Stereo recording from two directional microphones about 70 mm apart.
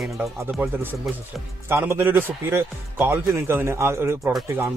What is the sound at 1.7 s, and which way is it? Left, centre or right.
A man's voice, right.